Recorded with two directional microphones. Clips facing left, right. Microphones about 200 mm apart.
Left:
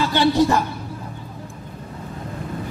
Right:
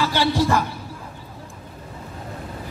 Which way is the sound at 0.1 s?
20° left (ahead or behind).